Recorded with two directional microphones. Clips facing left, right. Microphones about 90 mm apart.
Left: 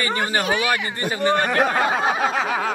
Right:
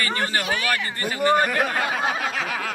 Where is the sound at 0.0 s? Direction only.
20° left (ahead or behind).